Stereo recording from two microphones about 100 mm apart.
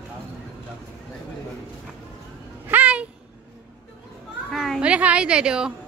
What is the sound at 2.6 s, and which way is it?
Music, 15° right (ahead or behind).